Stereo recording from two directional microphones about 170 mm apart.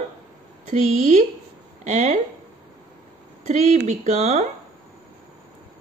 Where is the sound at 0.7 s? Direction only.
40° right (ahead or behind).